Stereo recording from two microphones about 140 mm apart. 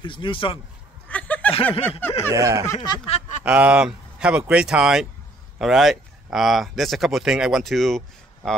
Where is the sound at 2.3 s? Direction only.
20° right (ahead or behind).